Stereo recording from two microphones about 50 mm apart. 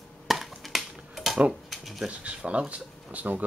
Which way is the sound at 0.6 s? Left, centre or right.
Centre.